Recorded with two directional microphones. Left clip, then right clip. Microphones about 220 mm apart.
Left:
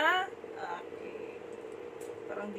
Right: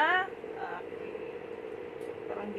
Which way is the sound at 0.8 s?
35° right (ahead or behind).